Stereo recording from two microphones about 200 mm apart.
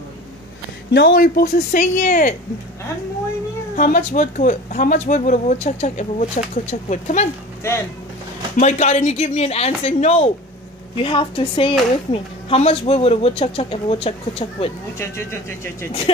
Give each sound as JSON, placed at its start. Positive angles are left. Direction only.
{"t": 0.9, "sound": "speech", "side_deg": 50}
{"t": 3.7, "sound": "speech", "side_deg": 40}
{"t": 7.6, "sound": "speech", "side_deg": 10}
{"t": 8.5, "sound": "speech", "side_deg": 35}
{"t": 15.0, "sound": "speech", "side_deg": 10}